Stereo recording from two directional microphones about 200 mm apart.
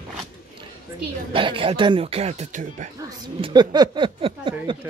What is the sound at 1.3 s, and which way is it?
Speech, 25° right (ahead or behind).